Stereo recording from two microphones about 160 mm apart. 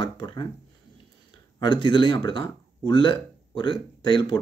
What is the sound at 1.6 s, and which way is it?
Speech, 30° left (ahead or behind).